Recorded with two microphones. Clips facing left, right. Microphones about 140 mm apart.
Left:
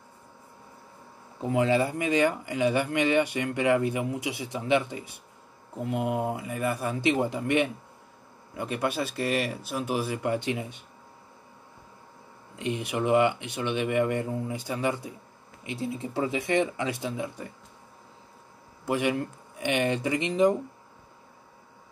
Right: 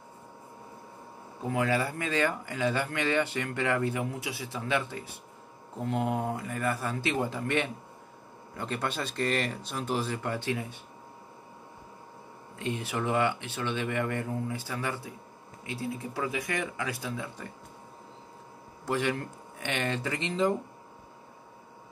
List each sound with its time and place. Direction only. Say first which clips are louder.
1.5 s speech: left 5 dB; 20° left (ahead or behind)
12.5 s speech: left 3 dB; 15° left (ahead or behind)
18.9 s speech: left 3 dB; 15° left (ahead or behind)